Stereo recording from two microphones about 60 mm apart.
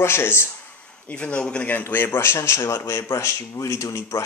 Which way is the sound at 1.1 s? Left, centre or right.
Centre.